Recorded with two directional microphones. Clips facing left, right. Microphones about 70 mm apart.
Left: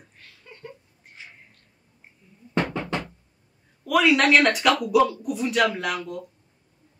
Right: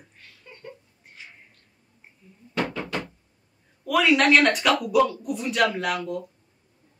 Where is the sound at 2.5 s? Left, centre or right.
Left.